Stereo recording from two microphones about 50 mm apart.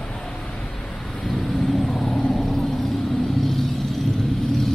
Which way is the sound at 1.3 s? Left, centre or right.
Centre.